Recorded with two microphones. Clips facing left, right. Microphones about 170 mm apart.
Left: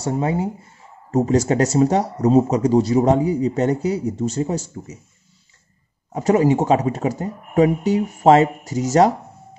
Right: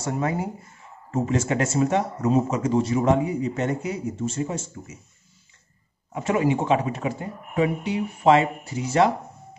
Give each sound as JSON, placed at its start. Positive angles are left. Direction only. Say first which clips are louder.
{"t": 0.0, "sound": "speech", "louder": "left 5 dB", "side_deg": 30}
{"t": 6.1, "sound": "speech", "louder": "left 6 dB", "side_deg": 40}